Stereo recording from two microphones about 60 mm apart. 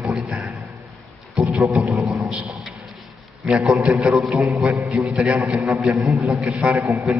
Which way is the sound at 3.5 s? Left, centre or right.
Centre.